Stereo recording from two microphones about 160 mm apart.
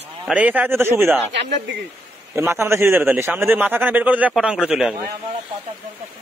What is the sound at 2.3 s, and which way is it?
A man's voice, 15° right (ahead or behind).